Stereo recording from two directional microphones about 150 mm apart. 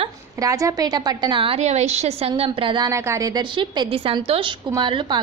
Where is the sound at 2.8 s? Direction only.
20° right (ahead or behind).